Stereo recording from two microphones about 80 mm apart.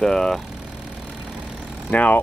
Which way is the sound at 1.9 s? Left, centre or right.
Centre.